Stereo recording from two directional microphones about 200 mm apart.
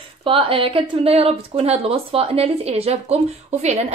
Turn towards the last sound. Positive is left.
turn(degrees=-35)  # may be behind; listen again after turning